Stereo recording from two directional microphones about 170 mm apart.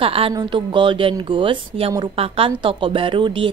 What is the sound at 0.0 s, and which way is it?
A woman's voice, 35° right (ahead or behind).